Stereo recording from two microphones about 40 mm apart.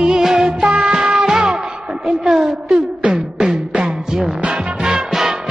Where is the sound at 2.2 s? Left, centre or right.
Centre.